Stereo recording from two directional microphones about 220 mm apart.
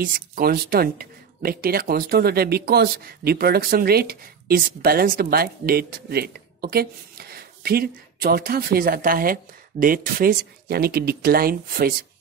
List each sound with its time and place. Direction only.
0.0 s speech: 40° right (ahead or behind)